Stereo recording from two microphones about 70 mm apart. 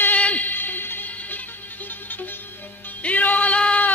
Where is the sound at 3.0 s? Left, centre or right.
Left.